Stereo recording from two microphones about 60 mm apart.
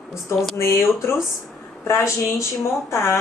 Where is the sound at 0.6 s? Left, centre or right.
Left.